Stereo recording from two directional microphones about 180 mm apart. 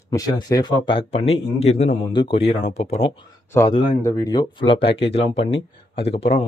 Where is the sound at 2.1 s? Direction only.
25° left (ahead or behind).